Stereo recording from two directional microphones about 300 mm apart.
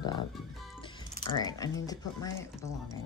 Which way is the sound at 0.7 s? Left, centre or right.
Centre.